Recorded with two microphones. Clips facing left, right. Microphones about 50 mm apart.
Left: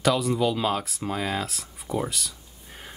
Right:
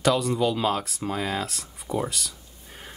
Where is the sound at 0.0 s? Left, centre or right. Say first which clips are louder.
Even; centre.